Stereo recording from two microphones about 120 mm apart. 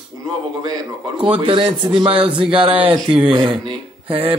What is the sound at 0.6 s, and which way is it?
A man's voice, 35° right (ahead or behind).